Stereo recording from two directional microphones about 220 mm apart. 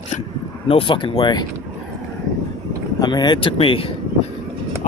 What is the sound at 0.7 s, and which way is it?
Speech, 25° left (ahead or behind).